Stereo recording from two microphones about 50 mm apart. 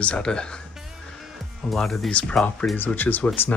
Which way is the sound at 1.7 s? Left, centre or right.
Centre.